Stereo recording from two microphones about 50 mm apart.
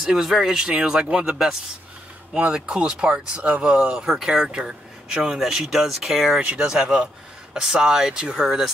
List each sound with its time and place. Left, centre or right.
0.0 s speech: centre
2.3 s speech: centre
6.4 s speech: right